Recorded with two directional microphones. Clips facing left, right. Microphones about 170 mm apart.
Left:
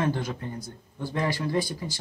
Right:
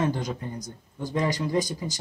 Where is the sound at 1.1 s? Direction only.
20° right (ahead or behind).